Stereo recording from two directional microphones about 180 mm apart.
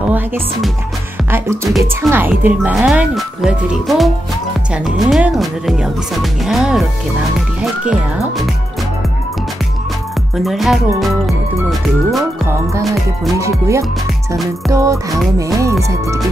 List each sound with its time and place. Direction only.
0.0 s speech: 5° right (ahead or behind)
1.3 s music: 15° right (ahead or behind)
1.8 s speech: 15° right (ahead or behind)
10.4 s speech: centre (ahead or behind)
13.4 s music: 15° right (ahead or behind)